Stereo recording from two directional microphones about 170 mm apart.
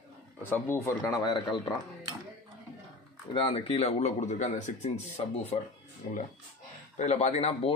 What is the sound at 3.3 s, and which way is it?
Speech, 35° left (ahead or behind).